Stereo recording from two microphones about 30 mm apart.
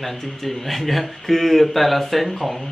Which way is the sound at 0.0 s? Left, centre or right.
Centre.